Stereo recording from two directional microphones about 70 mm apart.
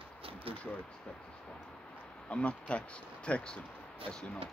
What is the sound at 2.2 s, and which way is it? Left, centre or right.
Speech, centre.